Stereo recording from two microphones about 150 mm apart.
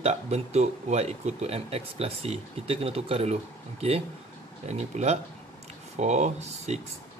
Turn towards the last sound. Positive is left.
turn(degrees=-50)  # may be behind; listen again after turning